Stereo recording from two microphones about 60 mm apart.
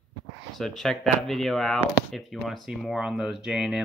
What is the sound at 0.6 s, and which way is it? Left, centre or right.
Speech, centre.